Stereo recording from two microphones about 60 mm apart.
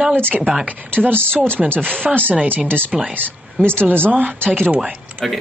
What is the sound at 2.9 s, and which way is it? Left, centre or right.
Speech, centre.